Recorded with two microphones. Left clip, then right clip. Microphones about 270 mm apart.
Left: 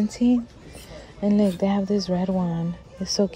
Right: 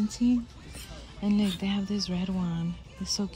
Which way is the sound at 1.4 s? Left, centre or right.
Centre.